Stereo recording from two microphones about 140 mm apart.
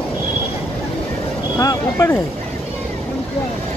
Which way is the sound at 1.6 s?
20° left (ahead or behind).